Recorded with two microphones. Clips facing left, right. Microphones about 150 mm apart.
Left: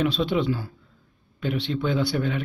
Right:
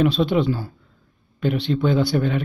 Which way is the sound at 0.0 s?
50° right (ahead or behind).